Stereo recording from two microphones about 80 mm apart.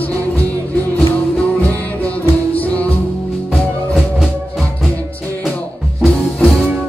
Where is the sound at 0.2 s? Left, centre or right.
Right.